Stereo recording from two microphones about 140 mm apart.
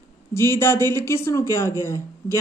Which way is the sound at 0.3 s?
20° left (ahead or behind).